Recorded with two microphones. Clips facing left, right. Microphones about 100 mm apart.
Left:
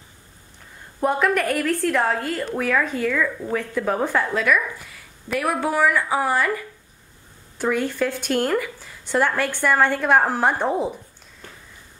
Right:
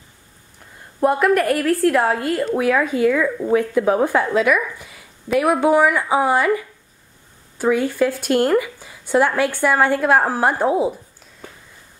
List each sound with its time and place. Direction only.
1.0 s a woman's voice: centre (ahead or behind)
7.5 s a woman's voice: 10° right (ahead or behind)